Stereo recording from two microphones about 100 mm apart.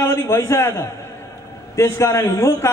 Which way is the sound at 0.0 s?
25° left (ahead or behind).